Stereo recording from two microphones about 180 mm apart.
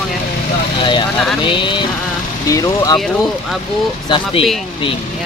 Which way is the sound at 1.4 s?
25° left (ahead or behind).